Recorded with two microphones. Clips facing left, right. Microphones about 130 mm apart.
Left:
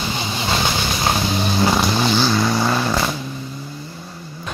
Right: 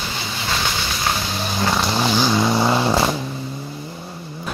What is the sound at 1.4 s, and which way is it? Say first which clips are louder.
Vehicle: left 4 dB; 5° left (ahead or behind).